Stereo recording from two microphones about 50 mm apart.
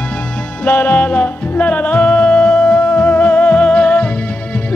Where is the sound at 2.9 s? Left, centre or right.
Left.